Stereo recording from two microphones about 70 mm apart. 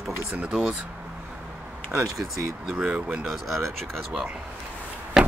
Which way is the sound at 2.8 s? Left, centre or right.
Centre.